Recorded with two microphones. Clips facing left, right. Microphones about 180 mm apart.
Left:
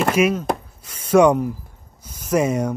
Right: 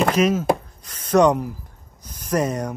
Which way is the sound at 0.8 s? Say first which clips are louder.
Left 2 dB; 10° left (ahead or behind).